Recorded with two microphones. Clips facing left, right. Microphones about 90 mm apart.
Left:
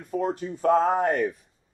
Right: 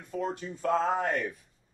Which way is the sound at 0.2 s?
45° left (ahead or behind).